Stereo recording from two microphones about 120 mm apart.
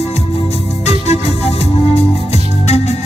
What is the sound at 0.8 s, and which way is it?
Music, 60° left (ahead or behind).